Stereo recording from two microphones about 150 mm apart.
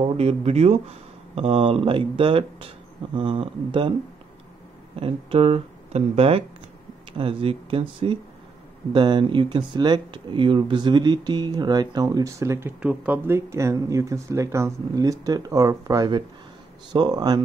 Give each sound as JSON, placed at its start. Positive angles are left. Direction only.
{"t": 0.0, "sound": "speech", "side_deg": -45}
{"t": 5.0, "sound": "speech", "side_deg": -40}